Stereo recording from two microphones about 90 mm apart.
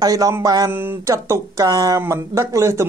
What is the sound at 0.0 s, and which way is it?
Speech, 40° right (ahead or behind).